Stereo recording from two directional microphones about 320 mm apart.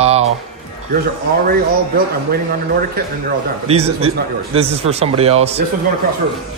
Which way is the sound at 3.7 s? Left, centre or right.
Centre.